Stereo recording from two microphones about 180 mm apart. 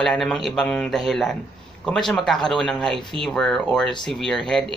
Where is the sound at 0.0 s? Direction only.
5° left (ahead or behind).